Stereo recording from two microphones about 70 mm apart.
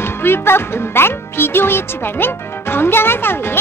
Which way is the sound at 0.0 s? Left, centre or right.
Left.